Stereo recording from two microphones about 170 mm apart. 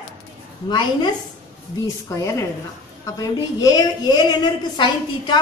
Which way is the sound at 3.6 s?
25° left (ahead or behind).